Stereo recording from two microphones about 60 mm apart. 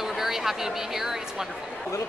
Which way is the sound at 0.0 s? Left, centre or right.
Centre.